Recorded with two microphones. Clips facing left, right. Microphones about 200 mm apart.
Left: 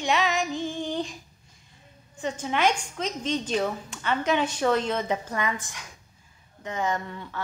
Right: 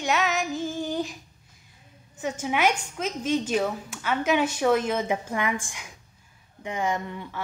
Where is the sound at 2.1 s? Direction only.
10° right (ahead or behind).